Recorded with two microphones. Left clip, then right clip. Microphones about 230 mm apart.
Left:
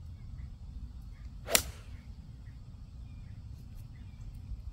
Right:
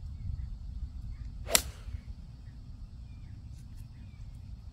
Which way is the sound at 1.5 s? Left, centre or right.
Centre.